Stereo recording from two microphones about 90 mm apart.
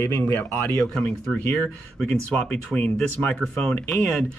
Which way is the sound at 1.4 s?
15° left (ahead or behind).